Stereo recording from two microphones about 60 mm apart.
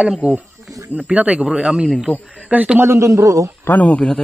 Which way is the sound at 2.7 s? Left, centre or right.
Right.